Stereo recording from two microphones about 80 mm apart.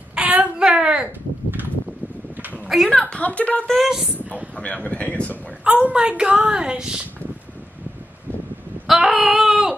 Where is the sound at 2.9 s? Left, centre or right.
Centre.